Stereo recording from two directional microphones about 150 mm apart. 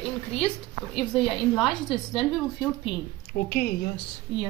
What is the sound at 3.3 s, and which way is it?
Speech, 90° left.